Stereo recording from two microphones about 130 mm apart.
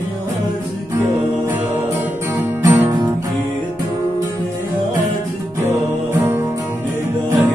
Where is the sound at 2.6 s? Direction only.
15° right (ahead or behind).